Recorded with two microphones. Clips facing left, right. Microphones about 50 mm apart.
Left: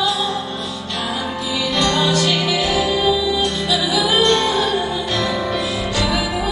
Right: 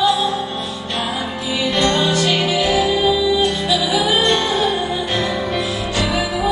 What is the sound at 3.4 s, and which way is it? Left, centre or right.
Music, right.